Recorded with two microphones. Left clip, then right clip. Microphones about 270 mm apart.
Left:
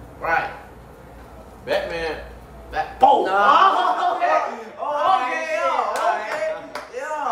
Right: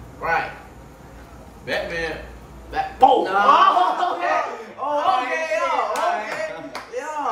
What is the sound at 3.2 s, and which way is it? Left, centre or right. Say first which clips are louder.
Speech: left 1 dB; centre.